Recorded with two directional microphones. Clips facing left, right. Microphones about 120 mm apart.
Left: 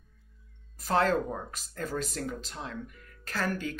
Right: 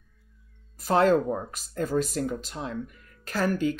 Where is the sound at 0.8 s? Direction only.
15° right (ahead or behind).